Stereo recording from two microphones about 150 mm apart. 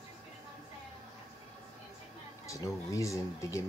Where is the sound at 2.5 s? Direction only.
20° left (ahead or behind).